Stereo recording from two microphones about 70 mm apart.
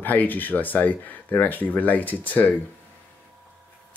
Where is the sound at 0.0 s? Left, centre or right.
Left.